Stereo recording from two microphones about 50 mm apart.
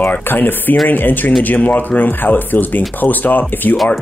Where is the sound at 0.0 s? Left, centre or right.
Left.